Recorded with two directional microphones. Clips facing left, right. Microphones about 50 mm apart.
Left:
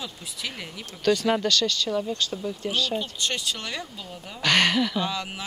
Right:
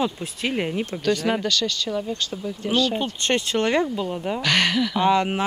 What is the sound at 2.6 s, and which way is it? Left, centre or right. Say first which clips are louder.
Speech: right 6 dB; right.